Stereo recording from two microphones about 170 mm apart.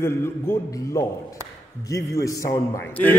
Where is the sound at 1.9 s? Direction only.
20° left (ahead or behind).